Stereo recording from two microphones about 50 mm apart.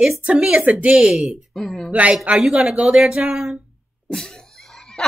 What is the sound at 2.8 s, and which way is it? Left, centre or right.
Speech, centre.